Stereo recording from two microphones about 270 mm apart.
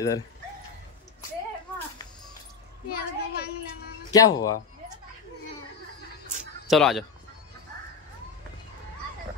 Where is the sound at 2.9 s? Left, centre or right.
Left.